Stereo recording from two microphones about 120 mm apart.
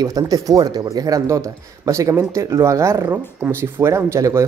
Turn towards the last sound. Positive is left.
turn(degrees=-25)  # may be behind; listen again after turning